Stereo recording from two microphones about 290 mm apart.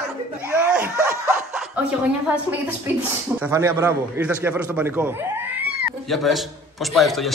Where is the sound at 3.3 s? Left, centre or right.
Centre.